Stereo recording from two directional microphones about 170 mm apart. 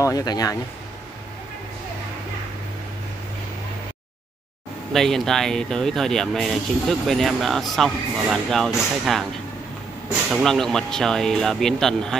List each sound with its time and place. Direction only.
0.0 s speech: 20° left (ahead or behind)
4.9 s speech: centre (ahead or behind)
10.3 s speech: centre (ahead or behind)